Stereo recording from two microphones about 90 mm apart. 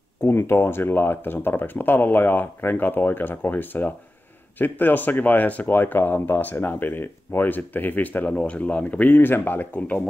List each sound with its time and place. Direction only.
0.2 s speech: 30° left (ahead or behind)